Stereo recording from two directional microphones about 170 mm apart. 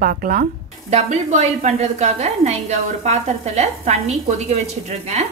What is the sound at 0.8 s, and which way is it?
A woman's voice, 40° right (ahead or behind).